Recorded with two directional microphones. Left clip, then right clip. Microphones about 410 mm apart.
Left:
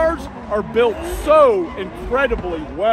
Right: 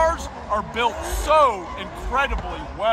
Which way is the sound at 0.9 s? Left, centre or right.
Right.